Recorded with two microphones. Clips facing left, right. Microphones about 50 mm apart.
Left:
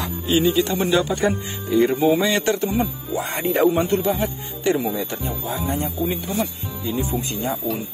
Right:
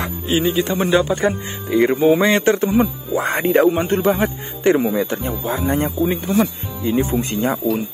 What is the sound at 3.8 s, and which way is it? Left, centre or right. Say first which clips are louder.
Speech: right 4 dB; right.